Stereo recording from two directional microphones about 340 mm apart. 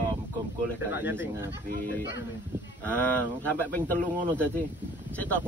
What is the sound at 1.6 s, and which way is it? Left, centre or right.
Speech, right.